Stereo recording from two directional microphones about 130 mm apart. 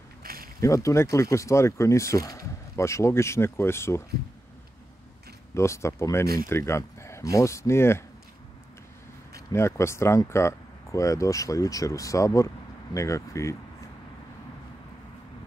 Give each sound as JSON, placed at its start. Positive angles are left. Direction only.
{"t": 0.6, "sound": "speech", "side_deg": 25}
{"t": 5.5, "sound": "speech", "side_deg": 20}
{"t": 9.5, "sound": "speech", "side_deg": 20}